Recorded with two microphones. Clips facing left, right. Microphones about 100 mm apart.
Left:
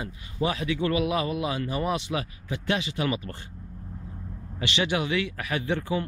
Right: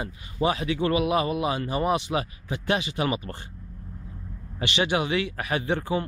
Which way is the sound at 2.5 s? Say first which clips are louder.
Right 2 dB; 15° right (ahead or behind).